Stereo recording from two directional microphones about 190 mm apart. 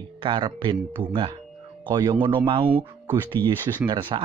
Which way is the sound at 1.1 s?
25° right (ahead or behind).